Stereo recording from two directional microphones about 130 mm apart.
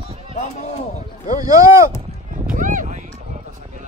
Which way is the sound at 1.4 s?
25° right (ahead or behind).